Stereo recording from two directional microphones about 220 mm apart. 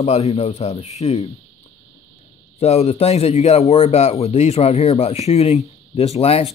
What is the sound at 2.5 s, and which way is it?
Speech, 30° left (ahead or behind).